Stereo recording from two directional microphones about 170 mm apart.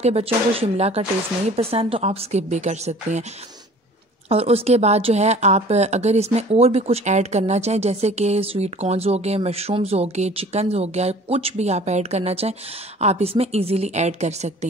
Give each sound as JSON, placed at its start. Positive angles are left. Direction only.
{"t": 0.0, "sound": "speech", "side_deg": -35}
{"t": 4.3, "sound": "speech", "side_deg": -35}